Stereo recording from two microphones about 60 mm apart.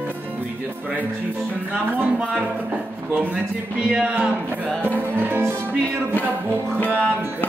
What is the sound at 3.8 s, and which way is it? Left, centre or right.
Speech, right.